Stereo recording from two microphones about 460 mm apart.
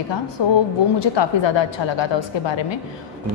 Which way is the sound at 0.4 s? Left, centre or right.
Left.